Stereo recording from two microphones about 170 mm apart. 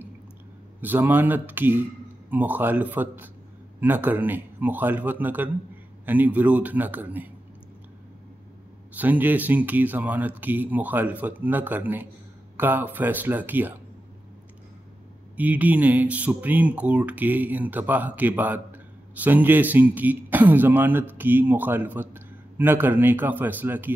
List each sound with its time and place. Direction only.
0.7 s speech: 10° right (ahead or behind)
8.9 s speech: 10° right (ahead or behind)
15.3 s speech: 10° right (ahead or behind)